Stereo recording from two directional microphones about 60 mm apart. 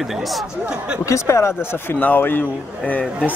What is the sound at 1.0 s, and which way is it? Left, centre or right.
Speech, left.